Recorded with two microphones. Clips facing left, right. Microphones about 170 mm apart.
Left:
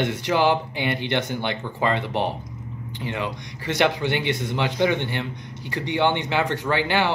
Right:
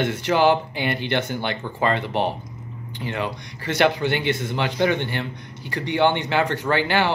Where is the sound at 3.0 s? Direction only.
20° left (ahead or behind).